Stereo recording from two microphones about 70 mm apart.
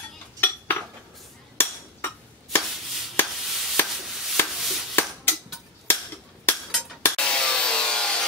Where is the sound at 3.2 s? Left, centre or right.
Left.